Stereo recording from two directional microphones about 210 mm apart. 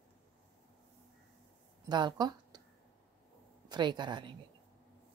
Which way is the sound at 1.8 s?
20° right (ahead or behind).